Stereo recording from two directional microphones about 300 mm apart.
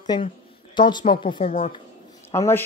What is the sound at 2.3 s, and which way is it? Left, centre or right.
Speech, centre.